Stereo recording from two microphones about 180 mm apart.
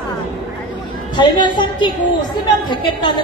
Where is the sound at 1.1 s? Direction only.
25° left (ahead or behind).